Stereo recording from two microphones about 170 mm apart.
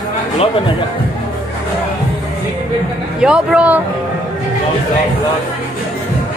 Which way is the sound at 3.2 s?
5° right (ahead or behind).